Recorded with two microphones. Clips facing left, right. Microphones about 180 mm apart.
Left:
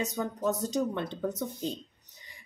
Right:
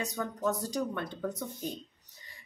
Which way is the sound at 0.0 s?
20° left (ahead or behind).